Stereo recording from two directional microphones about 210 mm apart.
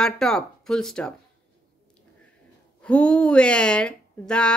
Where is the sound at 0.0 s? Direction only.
Centre (ahead or behind).